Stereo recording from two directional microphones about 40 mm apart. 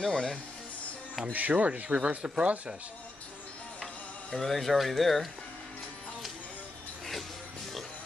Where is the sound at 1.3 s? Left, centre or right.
Right.